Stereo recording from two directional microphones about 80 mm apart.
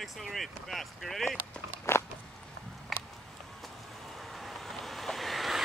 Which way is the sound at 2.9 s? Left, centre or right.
Centre.